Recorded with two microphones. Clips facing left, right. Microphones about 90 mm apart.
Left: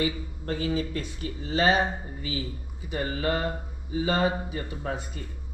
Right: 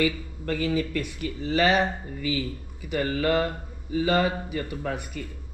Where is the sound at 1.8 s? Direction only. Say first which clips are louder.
Right 2 dB; 25° left (ahead or behind).